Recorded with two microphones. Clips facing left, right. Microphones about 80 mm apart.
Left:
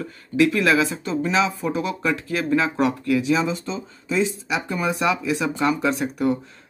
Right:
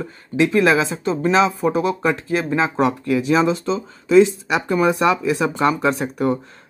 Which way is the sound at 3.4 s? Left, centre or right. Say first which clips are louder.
Right 7 dB; right.